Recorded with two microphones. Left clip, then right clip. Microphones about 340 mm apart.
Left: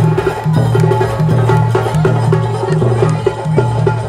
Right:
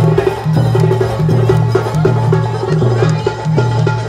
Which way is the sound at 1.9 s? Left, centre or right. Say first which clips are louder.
Even; left.